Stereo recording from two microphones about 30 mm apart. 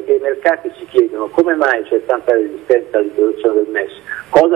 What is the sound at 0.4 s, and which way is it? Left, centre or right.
A man's voice, centre.